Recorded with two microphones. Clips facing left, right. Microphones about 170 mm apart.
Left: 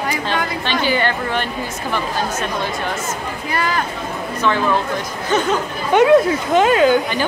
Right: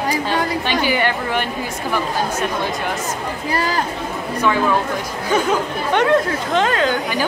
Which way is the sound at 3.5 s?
35° right (ahead or behind).